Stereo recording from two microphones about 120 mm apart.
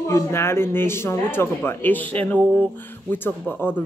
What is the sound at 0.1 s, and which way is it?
Speech, 20° left (ahead or behind).